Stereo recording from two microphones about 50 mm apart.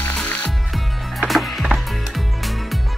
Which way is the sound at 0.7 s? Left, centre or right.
Centre.